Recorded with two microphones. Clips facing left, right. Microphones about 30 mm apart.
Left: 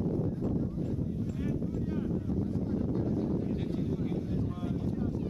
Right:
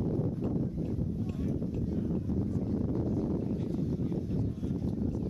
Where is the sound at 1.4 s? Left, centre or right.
Left.